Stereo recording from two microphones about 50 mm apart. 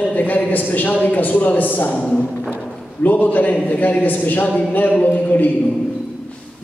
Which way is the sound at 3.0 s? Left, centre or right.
Left.